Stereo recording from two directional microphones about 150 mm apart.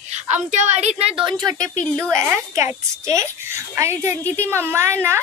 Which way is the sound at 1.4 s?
20° right (ahead or behind).